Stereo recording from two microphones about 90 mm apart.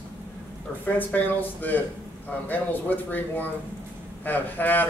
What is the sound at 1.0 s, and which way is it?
A man's voice, 20° left (ahead or behind).